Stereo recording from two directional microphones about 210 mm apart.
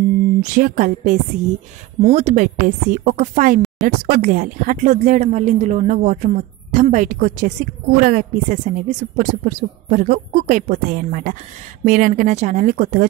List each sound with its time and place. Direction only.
0.4 s speech: 40° right (ahead or behind)